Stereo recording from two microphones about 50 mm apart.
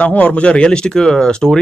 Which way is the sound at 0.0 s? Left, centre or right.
Left.